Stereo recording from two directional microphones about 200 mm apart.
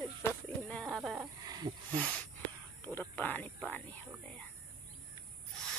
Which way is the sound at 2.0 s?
5° left (ahead or behind).